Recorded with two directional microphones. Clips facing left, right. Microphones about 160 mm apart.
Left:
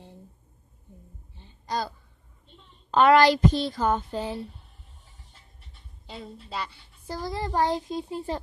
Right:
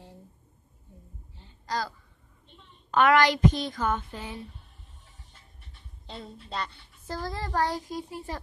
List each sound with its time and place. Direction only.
1.4 s a sound: 20° left (ahead or behind)
2.9 s a woman's voice: 30° left (ahead or behind)
6.0 s a woman's voice: 5° left (ahead or behind); by 8.4 s 25° left (ahead or behind)